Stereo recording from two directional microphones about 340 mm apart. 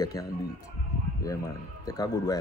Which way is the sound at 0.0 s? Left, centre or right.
Centre.